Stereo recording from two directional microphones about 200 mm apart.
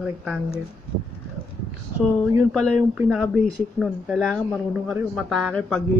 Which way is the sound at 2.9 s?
5° right (ahead or behind).